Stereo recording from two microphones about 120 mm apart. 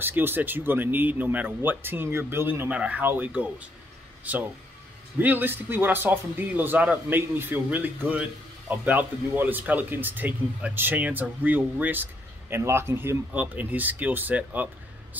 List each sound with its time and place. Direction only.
0.0 s speech: 15° right (ahead or behind)